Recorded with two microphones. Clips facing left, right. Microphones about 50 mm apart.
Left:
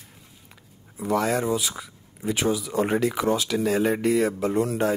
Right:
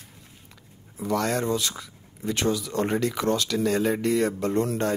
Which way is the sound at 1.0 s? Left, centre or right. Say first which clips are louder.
Left 2 dB; centre.